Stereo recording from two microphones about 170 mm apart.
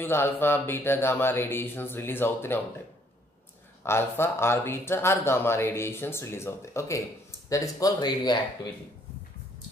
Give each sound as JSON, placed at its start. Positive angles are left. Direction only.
{"t": 0.0, "sound": "speech", "side_deg": 15}
{"t": 3.8, "sound": "speech", "side_deg": 15}